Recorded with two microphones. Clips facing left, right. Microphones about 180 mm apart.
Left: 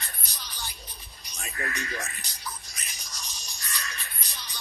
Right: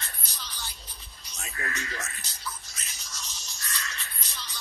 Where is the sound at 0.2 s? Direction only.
15° left (ahead or behind).